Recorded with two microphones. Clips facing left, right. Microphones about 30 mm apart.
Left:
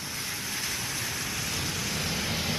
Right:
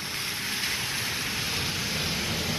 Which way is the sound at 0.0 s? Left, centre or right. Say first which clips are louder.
Right 3 dB; right.